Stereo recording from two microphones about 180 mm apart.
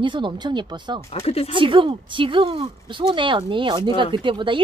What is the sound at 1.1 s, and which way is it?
Speech, 35° left (ahead or behind).